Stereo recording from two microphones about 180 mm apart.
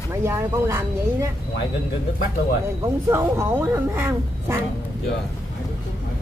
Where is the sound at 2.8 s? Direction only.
15° right (ahead or behind).